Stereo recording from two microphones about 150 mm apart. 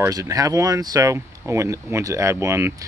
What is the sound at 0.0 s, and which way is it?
Speech, 20° right (ahead or behind).